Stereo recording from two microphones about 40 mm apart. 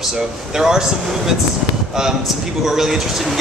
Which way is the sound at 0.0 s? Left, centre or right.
Centre.